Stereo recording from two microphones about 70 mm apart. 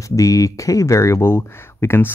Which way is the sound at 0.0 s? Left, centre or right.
Left.